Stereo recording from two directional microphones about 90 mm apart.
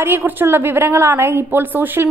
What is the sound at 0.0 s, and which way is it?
A woman's voice, 20° right (ahead or behind).